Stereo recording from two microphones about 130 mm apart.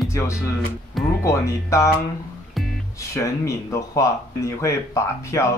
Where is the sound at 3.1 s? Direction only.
25° left (ahead or behind).